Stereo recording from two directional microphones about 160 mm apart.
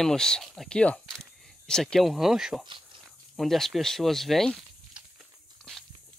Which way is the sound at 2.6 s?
30° right (ahead or behind).